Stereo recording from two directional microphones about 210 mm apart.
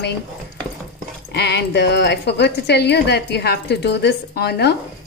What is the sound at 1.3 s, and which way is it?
A woman's voice, 55° left (ahead or behind).